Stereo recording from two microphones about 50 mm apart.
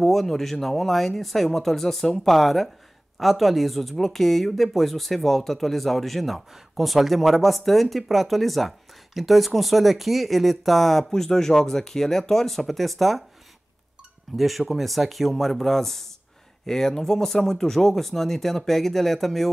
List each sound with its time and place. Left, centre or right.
0.0 s speech: centre
14.3 s speech: centre